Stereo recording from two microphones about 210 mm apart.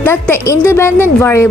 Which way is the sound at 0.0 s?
10° left (ahead or behind).